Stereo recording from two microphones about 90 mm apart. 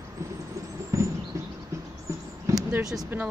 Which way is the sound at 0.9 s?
40° right (ahead or behind).